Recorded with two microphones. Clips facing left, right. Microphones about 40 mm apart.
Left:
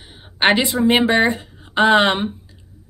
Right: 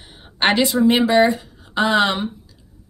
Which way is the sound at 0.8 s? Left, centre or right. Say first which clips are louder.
Even; left.